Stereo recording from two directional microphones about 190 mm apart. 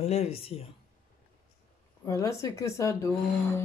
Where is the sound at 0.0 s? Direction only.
35° left (ahead or behind).